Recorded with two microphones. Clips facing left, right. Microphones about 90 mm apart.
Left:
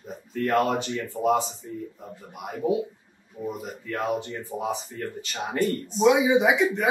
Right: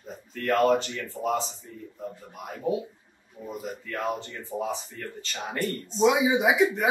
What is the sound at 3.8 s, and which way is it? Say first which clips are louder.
Speech: left 4 dB; 20° left (ahead or behind).